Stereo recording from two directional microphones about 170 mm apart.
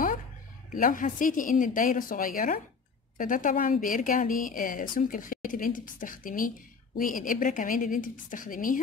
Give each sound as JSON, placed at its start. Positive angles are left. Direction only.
{"t": 0.7, "sound": "a woman's voice", "side_deg": 55}